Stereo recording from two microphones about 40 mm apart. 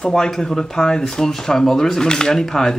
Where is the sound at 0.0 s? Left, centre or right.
Centre.